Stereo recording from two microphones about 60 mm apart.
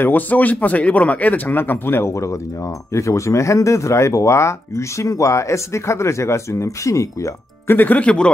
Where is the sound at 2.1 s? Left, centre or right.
Left.